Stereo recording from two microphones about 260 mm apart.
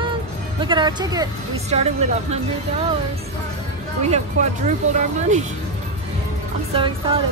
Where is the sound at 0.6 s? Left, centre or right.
Centre.